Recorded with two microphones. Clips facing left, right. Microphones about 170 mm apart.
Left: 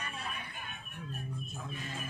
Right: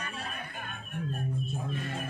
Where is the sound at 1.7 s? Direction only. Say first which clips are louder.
Right 7 dB; 60° right (ahead or behind).